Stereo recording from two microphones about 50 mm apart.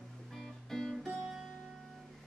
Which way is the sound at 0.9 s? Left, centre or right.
Centre.